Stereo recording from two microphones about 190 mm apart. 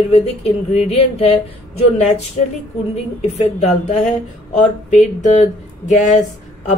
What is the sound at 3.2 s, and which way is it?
A woman's voice, 35° left (ahead or behind).